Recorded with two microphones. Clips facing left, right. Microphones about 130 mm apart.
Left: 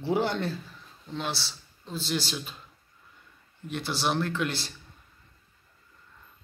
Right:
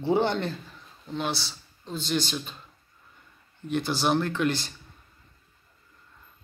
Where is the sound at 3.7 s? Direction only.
Centre (ahead or behind).